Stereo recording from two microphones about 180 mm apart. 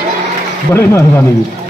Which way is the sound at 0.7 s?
15° left (ahead or behind).